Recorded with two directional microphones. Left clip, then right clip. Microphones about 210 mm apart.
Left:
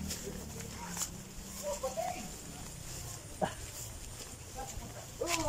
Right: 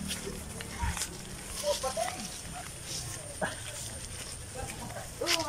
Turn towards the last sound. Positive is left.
turn(degrees=15)  # may be behind; listen again after turning